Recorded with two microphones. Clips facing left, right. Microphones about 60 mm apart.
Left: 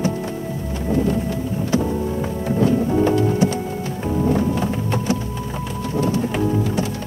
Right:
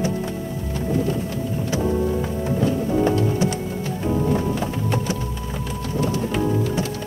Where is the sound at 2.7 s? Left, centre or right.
Left.